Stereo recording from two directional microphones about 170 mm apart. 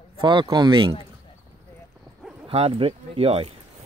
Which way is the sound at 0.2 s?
30° right (ahead or behind).